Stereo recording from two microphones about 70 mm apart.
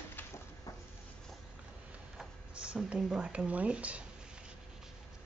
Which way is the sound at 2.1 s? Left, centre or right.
Centre.